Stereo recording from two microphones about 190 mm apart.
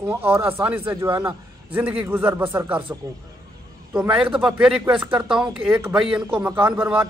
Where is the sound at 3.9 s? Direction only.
5° right (ahead or behind).